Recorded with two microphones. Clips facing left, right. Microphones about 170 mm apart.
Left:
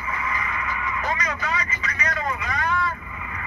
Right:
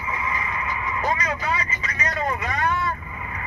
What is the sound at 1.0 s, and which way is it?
Vehicle, 30° right (ahead or behind).